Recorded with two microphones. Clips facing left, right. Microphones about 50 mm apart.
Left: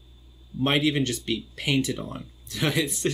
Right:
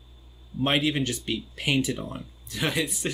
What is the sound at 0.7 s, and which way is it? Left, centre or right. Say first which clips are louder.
Speech: left 2 dB; centre.